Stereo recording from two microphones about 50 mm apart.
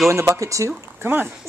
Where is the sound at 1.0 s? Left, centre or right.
Right.